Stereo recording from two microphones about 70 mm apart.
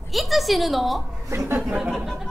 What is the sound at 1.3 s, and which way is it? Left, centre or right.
Speech, right.